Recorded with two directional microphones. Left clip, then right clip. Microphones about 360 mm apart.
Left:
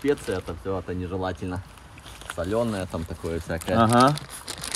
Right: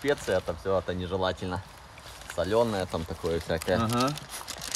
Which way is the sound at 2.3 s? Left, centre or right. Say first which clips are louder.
Right 1 dB; right.